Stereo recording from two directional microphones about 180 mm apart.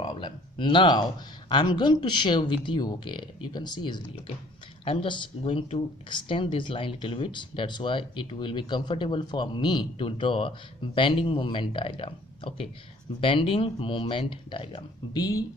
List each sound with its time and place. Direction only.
0.0 s speech: 25° left (ahead or behind)